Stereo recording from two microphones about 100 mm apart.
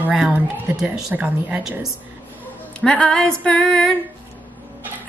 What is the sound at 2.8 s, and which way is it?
A woman's voice, 10° left (ahead or behind).